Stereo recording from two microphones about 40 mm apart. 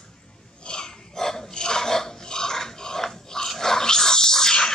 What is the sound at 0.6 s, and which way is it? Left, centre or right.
Dog, centre.